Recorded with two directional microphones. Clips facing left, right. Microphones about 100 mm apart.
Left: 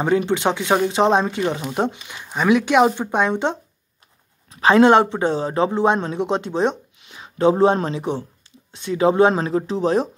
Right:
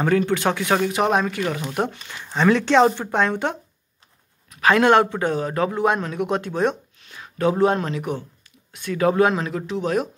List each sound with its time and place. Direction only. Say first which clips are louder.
0.0 s a man's voice: left 1 dB; 20° left (ahead or behind)